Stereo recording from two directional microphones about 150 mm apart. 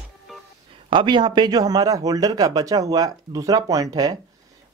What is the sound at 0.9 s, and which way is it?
Speech, 30° right (ahead or behind).